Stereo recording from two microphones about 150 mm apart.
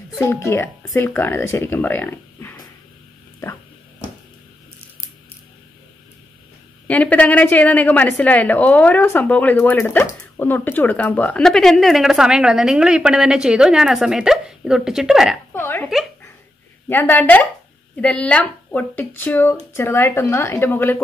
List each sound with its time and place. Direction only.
0.2 s a woman's voice: 15° left (ahead or behind)
6.9 s a woman's voice: 10° left (ahead or behind)
15.5 s burping: 15° left (ahead or behind)
16.9 s a woman's voice: 10° left (ahead or behind)